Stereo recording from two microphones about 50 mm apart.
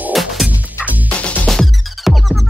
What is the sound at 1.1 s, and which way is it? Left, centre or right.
Music, left.